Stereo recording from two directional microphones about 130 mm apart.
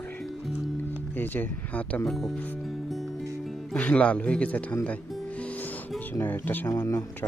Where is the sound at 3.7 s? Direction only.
10° left (ahead or behind).